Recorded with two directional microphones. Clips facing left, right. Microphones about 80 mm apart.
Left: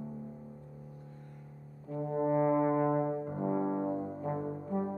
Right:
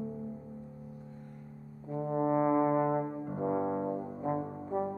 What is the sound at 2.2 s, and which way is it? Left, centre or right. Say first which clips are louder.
Brass instrument: even; centre.